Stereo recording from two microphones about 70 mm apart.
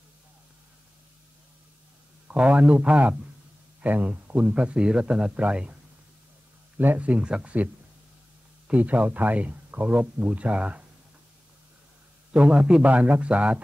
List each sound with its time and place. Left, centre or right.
2.2 s speech: centre
6.8 s speech: right
12.3 s speech: centre